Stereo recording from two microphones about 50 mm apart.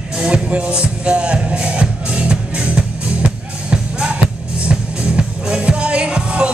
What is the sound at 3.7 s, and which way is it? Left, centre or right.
Music, centre.